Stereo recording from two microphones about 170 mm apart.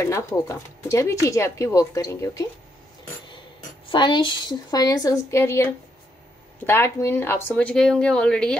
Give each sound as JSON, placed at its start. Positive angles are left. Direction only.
{"t": 0.0, "sound": "speech", "side_deg": 15}
{"t": 3.9, "sound": "a woman's voice", "side_deg": 30}